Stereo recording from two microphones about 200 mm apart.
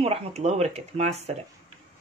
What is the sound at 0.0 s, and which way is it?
Speech, 30° right (ahead or behind).